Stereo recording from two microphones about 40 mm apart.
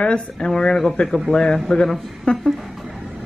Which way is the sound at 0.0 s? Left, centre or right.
Left.